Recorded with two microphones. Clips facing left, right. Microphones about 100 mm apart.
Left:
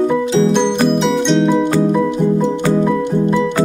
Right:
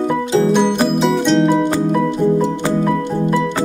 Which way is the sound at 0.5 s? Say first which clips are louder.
Left 1 dB; 5° right (ahead or behind).